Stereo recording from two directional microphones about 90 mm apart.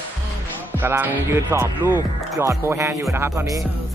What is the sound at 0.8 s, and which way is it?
Speech, 25° right (ahead or behind).